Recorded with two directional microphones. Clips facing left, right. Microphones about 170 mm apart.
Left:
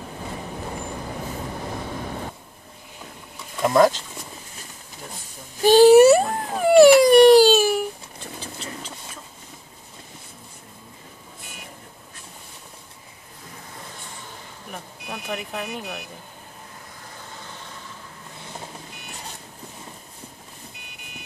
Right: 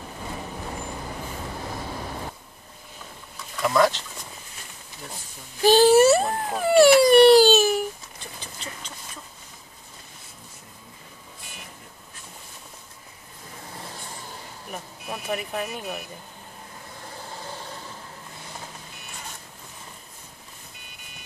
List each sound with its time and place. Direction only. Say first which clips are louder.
3.6 s speech: left 4 dB; 40° left (ahead or behind)
5.6 s a sound: left 4 dB; 15° left (ahead or behind)
14.7 s vehicle: right 1 dB; 5° right (ahead or behind)